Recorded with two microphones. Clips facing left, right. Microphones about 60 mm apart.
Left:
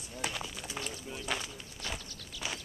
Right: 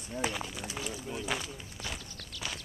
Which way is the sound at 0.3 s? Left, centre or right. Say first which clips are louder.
Right 3 dB; centre.